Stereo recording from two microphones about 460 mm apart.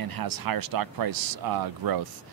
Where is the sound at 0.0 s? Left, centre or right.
Right.